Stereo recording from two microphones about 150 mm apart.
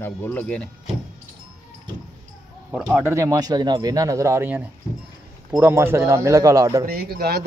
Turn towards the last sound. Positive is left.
turn(degrees=-90)